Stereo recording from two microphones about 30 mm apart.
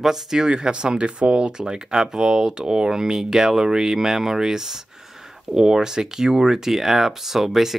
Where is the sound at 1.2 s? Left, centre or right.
Right.